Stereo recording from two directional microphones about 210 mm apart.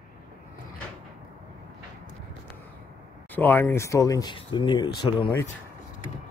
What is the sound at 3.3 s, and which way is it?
Speech, 10° left (ahead or behind).